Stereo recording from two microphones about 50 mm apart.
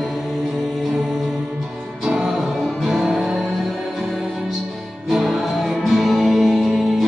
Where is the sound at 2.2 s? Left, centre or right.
Centre.